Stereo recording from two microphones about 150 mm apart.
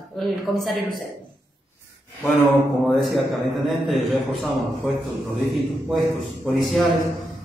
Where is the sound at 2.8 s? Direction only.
Centre (ahead or behind).